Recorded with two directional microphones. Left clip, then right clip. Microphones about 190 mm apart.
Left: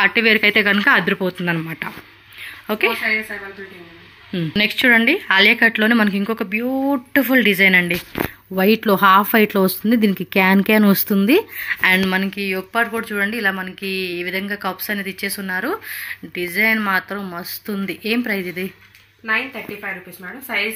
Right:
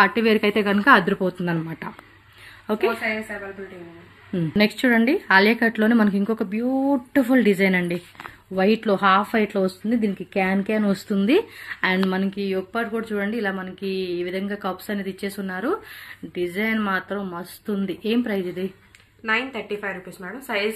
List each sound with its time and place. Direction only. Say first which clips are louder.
0.0 s speech: left 4 dB; 10° right (ahead or behind)
4.3 s speech: left 3 dB; centre (ahead or behind)
8.5 s speech: left 4 dB; 30° left (ahead or behind); by 11.1 s 45° left (ahead or behind)
11.1 s speech: left 3 dB; 25° left (ahead or behind)
11.6 s speech: left 7 dB; 5° left (ahead or behind)
19.2 s speech: left 2 dB; 20° right (ahead or behind)